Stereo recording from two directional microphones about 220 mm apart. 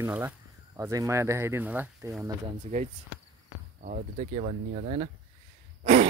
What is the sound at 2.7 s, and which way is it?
Speech, 30° right (ahead or behind).